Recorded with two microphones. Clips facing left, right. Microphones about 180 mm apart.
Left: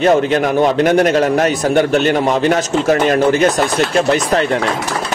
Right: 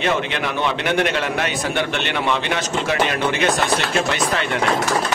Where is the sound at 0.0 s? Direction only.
40° left (ahead or behind).